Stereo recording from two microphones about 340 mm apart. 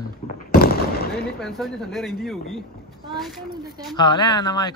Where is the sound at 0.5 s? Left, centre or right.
Left.